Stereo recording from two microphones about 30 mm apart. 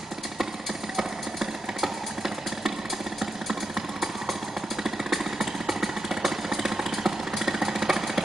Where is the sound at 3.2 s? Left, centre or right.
Centre.